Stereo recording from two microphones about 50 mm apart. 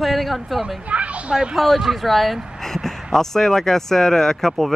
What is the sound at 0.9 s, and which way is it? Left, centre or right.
Speech, right.